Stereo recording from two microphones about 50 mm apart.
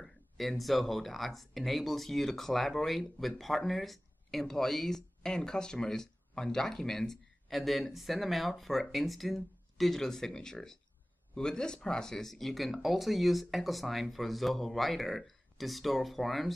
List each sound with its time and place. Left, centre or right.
0.0 s speech: centre